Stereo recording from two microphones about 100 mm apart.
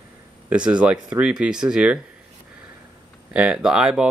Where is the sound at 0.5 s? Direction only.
10° right (ahead or behind).